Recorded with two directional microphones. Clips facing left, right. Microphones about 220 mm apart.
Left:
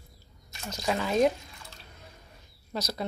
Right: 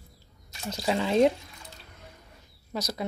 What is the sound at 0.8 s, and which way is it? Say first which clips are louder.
Speech: right 2 dB; 25° right (ahead or behind).